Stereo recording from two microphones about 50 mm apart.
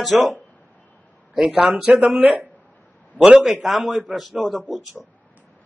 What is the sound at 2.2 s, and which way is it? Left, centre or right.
Speech, right.